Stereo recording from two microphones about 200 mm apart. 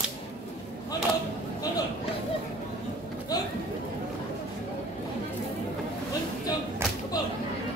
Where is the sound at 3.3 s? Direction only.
20° left (ahead or behind).